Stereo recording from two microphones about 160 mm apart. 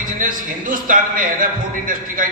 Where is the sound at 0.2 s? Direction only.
55° right (ahead or behind).